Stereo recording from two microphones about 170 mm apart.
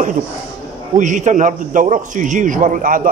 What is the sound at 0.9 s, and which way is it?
A man's voice, 45° right (ahead or behind).